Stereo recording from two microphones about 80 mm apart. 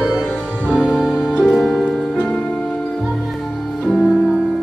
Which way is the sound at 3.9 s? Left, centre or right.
Centre.